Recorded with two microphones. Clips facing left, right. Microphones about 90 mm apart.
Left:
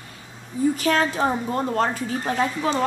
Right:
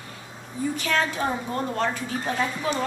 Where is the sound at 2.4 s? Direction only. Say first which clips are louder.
Left 5 dB; 30° left (ahead or behind).